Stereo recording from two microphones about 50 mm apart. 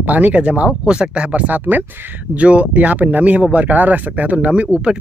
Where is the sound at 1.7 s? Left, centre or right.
Right.